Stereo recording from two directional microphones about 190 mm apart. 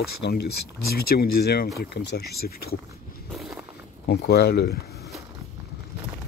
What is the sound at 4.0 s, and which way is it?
Speech, 55° left (ahead or behind).